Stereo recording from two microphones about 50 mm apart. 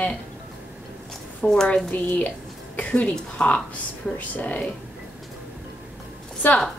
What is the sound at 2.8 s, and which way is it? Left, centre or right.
Speech, left.